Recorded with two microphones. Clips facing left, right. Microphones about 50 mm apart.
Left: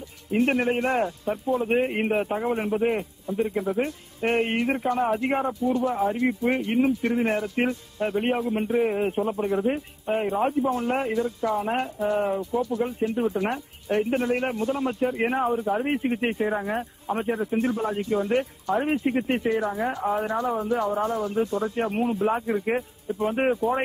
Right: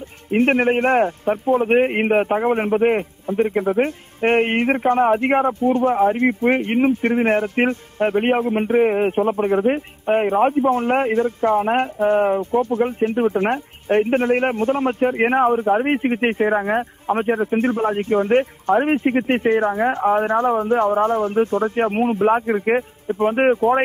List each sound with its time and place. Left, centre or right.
0.3 s a man's voice: right